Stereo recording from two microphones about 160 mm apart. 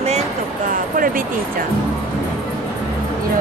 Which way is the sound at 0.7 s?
60° right (ahead or behind).